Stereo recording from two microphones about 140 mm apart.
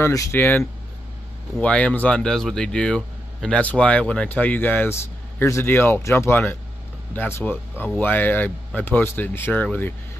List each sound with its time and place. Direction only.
0.0 s speech: 20° left (ahead or behind)